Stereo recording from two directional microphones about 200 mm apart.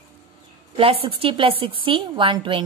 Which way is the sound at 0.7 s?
30° right (ahead or behind).